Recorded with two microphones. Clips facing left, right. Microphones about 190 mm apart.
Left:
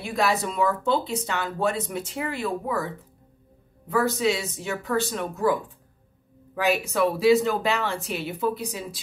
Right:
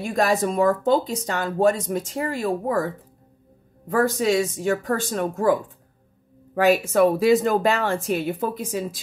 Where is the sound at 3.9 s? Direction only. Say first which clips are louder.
Right 3 dB; 45° right (ahead or behind).